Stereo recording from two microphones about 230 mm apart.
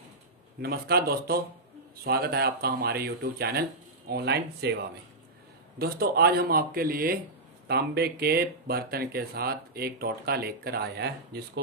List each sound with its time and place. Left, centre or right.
0.6 s speech: right
5.8 s speech: right